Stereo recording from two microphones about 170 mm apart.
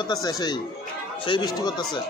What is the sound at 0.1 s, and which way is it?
Speech, 20° left (ahead or behind).